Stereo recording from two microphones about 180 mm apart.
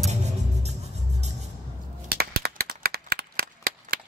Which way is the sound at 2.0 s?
60° right (ahead or behind).